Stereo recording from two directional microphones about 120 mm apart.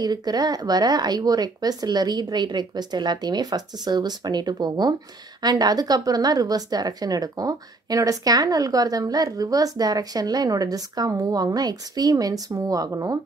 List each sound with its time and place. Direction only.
0.0 s a woman's voice: 35° right (ahead or behind)